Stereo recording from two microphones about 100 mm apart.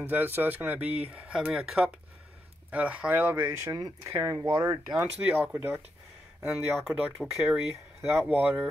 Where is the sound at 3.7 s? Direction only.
30° right (ahead or behind).